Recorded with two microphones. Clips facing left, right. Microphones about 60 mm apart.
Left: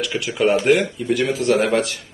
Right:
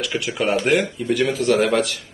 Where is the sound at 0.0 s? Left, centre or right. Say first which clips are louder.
Left 3 dB; centre.